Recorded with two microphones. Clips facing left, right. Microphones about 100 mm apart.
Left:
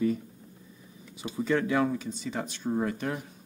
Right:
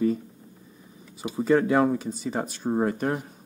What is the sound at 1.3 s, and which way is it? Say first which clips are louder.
Speech: right 6 dB; 35° right (ahead or behind).